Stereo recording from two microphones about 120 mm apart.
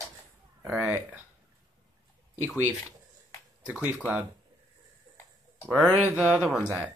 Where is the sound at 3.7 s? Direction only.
15° right (ahead or behind).